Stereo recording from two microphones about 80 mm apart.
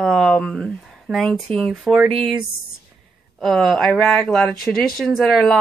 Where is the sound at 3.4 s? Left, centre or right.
Centre.